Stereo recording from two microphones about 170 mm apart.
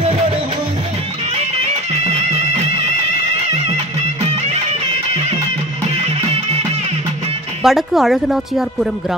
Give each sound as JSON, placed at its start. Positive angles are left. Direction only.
{"t": 1.3, "sound": "music", "side_deg": -35}
{"t": 5.9, "sound": "music", "side_deg": -35}
{"t": 7.6, "sound": "speech", "side_deg": 0}